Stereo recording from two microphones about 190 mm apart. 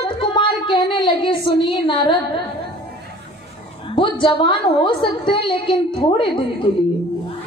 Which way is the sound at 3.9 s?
25° left (ahead or behind).